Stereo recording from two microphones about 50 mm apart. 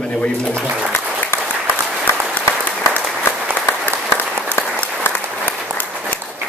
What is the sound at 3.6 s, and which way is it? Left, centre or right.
Applause, left.